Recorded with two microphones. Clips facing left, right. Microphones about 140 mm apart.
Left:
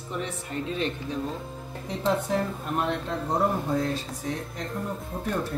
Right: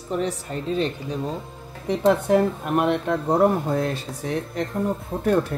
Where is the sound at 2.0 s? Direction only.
70° right (ahead or behind).